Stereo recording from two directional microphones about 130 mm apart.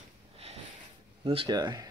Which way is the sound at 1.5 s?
35° right (ahead or behind).